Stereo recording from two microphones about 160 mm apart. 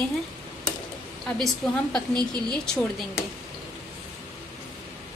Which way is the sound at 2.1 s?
25° right (ahead or behind).